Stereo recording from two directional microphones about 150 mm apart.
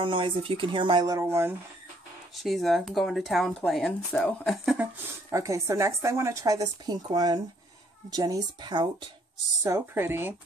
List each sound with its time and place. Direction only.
0.0 s speech: 35° right (ahead or behind); by 1.5 s 15° right (ahead or behind)
2.4 s speech: centre (ahead or behind)
5.3 s a woman's voice: 20° right (ahead or behind)
9.6 s speech: 15° right (ahead or behind)